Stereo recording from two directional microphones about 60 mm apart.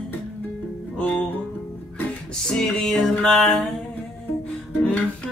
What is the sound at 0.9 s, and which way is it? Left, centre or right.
Music, left.